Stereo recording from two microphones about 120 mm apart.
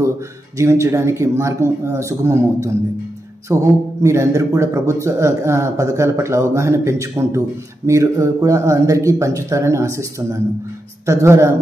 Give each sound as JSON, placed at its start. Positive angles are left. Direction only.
{"t": 0.6, "sound": "speech", "side_deg": -25}
{"t": 11.1, "sound": "speech", "side_deg": -25}